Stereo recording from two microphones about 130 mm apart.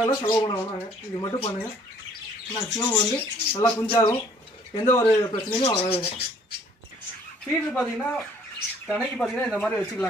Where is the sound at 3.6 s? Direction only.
40° left (ahead or behind).